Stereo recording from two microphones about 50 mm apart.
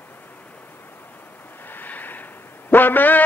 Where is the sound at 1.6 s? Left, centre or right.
Left.